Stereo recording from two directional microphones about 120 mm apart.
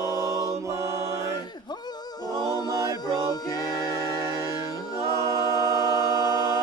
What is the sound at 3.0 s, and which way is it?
Music, 35° left (ahead or behind).